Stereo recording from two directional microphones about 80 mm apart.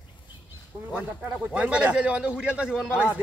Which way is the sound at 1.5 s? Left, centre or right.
Centre.